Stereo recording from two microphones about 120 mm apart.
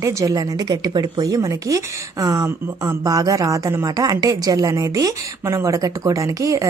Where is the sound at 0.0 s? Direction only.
30° right (ahead or behind).